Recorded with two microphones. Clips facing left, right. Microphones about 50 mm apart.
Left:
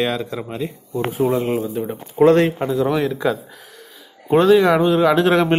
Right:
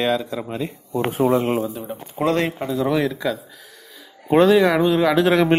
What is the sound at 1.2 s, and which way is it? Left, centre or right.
Speech, centre.